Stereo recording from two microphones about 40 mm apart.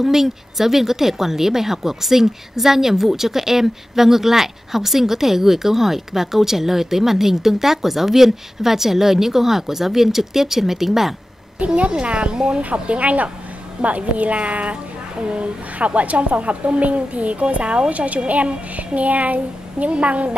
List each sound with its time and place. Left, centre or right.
0.0 s speech: centre
11.6 s a woman's voice: right
12.6 s a woman's voice: right